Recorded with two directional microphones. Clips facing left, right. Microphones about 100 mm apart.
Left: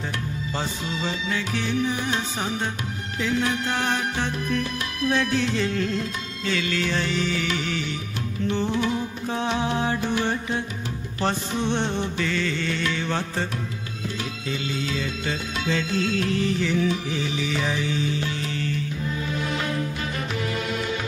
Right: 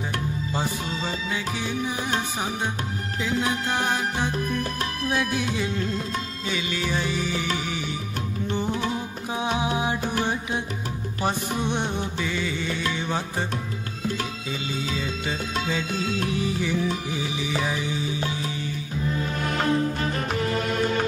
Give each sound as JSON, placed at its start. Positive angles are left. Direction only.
{"t": 1.0, "sound": "music", "side_deg": -10}
{"t": 8.9, "sound": "music", "side_deg": -10}
{"t": 14.5, "sound": "music", "side_deg": -15}
{"t": 20.5, "sound": "music", "side_deg": -45}